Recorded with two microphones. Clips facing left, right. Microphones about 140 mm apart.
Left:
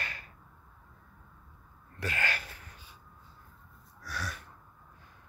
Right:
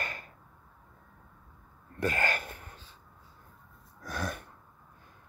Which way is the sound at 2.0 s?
45° right (ahead or behind).